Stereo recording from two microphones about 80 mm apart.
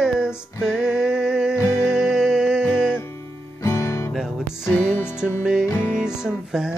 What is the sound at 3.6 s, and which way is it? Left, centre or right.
Music, left.